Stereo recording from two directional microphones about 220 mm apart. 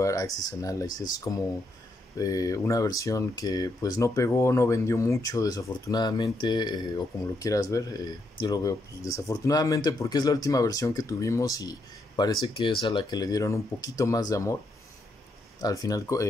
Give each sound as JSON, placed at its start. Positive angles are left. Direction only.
{"t": 0.0, "sound": "speech", "side_deg": 15}
{"t": 15.6, "sound": "speech", "side_deg": 15}